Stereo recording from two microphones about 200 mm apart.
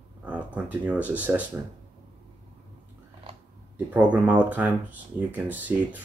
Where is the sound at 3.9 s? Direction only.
5° right (ahead or behind).